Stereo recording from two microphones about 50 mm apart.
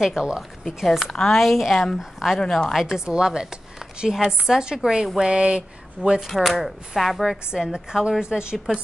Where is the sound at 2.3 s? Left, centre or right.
Centre.